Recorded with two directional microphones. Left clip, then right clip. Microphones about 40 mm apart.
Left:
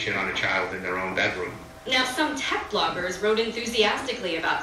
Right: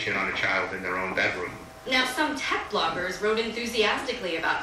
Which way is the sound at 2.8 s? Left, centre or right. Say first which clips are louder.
Left 1 dB; centre.